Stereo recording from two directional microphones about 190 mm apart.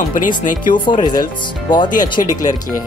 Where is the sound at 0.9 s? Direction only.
25° left (ahead or behind).